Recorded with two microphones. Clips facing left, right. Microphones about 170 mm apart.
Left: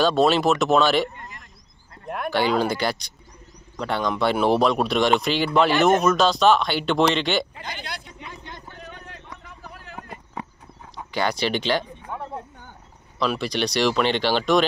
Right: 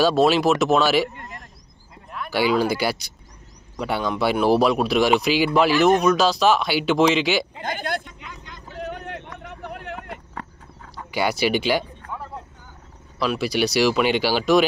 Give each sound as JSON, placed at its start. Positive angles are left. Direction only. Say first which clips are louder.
{"t": 0.0, "sound": "speech", "louder": "right 1 dB", "side_deg": -5}
{"t": 2.0, "sound": "a sound", "louder": "left 6 dB", "side_deg": 55}
{"t": 2.3, "sound": "speech", "louder": "right 2 dB", "side_deg": -5}
{"t": 7.6, "sound": "speech", "louder": "right 8 dB", "side_deg": -50}
{"t": 8.7, "sound": "vehicle", "louder": "right 9 dB", "side_deg": -65}
{"t": 11.1, "sound": "speech", "louder": "right 2 dB", "side_deg": -10}
{"t": 12.0, "sound": "a sound", "louder": "left 1 dB", "side_deg": 10}
{"t": 13.2, "sound": "speech", "louder": "right 2 dB", "side_deg": -5}